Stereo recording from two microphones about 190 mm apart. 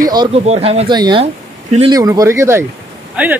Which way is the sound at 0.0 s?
20° right (ahead or behind).